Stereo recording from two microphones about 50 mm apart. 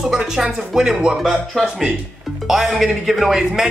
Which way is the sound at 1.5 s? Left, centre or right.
Centre.